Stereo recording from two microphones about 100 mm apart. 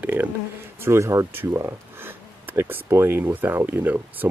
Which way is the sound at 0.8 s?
30° right (ahead or behind).